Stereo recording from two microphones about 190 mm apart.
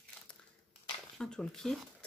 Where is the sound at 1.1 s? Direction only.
5° left (ahead or behind).